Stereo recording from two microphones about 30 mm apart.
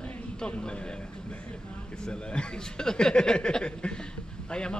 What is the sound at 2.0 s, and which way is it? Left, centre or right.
Speech, left.